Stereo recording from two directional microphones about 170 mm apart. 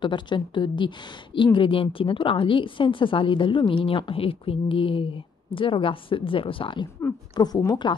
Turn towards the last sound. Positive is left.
turn(degrees=25)  # may be behind; listen again after turning